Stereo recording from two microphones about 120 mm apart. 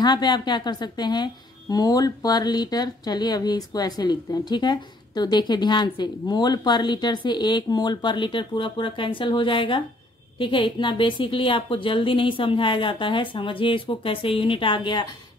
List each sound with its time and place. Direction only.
0.0 s a woman's voice: 35° left (ahead or behind)